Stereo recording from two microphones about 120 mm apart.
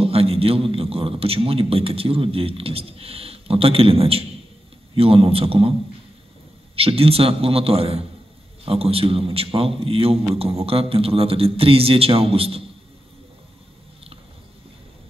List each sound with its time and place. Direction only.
0.0 s a man's voice: 55° right (ahead or behind)